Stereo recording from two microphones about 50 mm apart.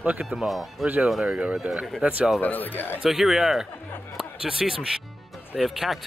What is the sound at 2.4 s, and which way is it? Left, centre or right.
Speech, left.